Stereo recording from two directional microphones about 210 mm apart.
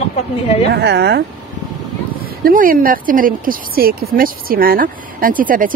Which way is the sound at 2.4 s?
40° right (ahead or behind).